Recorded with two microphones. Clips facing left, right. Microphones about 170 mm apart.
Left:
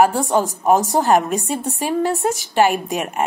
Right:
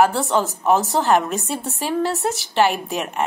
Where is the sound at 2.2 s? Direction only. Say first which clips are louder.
Left 2 dB; 40° left (ahead or behind).